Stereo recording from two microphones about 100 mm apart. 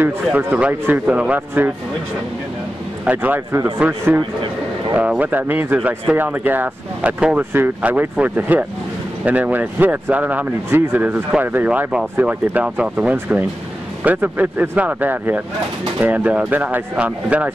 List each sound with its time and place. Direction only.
0.0 s speech: 20° right (ahead or behind)
3.1 s speech: 15° right (ahead or behind)
4.9 s speech: 15° right (ahead or behind)